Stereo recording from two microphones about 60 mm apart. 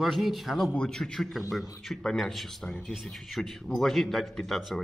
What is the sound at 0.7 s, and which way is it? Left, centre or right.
A man's voice, centre.